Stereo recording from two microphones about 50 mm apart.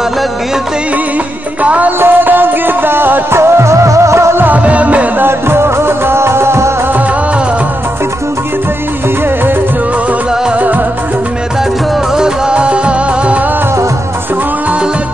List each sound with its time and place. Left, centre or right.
1.6 s music: right
1.9 s music: right
4.6 s music: right
5.2 s music: right
12.2 s music: right